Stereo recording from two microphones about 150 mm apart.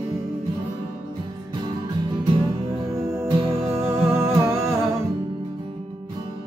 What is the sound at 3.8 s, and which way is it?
Music, 15° right (ahead or behind).